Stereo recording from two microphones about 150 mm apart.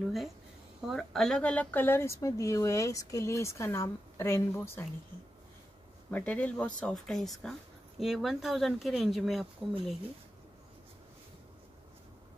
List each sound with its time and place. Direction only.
0.8 s speech: centre (ahead or behind); by 4.8 s 15° left (ahead or behind)
6.0 s speech: 10° left (ahead or behind)